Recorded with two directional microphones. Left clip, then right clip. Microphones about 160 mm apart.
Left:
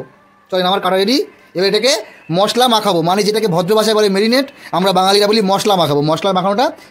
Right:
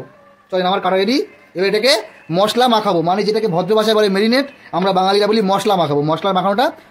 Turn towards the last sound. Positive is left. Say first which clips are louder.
# left 1 dB
turn(degrees=20)  # may be behind; listen again after turning